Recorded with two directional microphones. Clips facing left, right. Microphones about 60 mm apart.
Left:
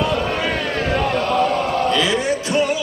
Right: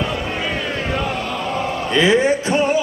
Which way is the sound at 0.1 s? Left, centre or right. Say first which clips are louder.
Left 3 dB; centre.